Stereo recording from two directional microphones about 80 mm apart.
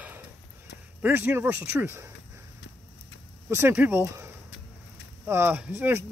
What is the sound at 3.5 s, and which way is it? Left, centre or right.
Speech, right.